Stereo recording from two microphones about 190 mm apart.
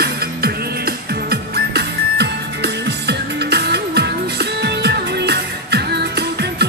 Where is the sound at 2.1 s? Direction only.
60° right (ahead or behind).